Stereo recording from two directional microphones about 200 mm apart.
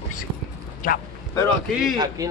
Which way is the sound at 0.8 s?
40° left (ahead or behind).